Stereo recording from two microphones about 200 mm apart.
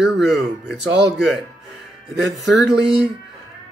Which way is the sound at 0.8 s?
60° right (ahead or behind).